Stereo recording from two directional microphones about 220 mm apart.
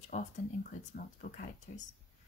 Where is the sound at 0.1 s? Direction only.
35° left (ahead or behind).